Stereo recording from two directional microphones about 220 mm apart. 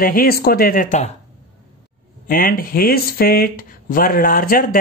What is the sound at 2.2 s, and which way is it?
Speech, 40° left (ahead or behind).